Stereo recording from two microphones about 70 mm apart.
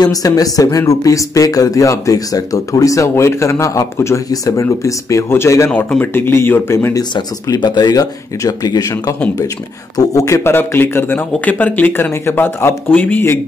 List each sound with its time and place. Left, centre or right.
0.0 s speech: left
5.3 s speech: left
5.7 s speech: left
6.9 s speech: left
9.9 s speech: left
10.5 s speech: left
12.9 s a man's voice: left